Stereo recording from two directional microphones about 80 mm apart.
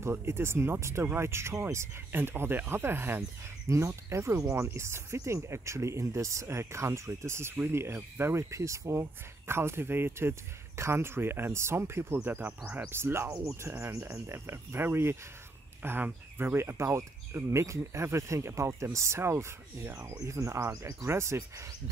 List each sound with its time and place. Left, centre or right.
0.0 s speech: right
12.9 s speech: right